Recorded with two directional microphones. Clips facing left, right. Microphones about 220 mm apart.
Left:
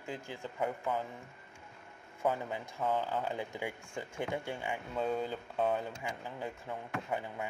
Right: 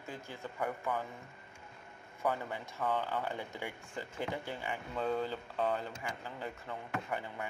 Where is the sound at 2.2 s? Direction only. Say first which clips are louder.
Left 2 dB; 20° left (ahead or behind).